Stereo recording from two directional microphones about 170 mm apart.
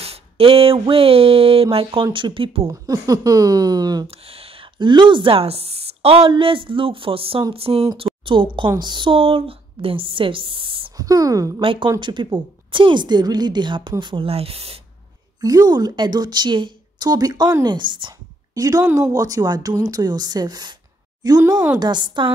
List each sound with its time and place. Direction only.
0.0 s speech: 35° right (ahead or behind)
2.7 s a woman's voice: 20° right (ahead or behind)
4.1 s a woman's voice: 35° right (ahead or behind)
11.1 s a woman's voice: 20° right (ahead or behind)
11.6 s a woman's voice: 30° right (ahead or behind)
15.4 s a woman's voice: 20° right (ahead or behind)